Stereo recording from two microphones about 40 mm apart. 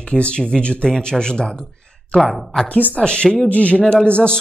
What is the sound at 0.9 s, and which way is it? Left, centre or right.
Speech, centre.